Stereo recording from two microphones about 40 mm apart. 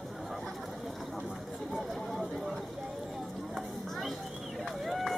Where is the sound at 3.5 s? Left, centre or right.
Centre.